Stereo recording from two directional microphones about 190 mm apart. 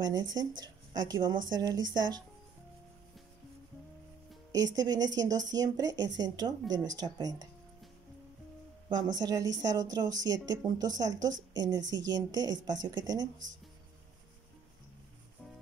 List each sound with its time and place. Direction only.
0.0 s a woman's voice: 20° right (ahead or behind)
4.5 s a woman's voice: 20° right (ahead or behind)
8.8 s a woman's voice: 25° right (ahead or behind)